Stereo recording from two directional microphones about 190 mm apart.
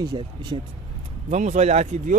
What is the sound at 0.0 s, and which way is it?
Speech, 20° right (ahead or behind).